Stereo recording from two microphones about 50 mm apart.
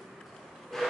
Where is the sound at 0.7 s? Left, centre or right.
Centre.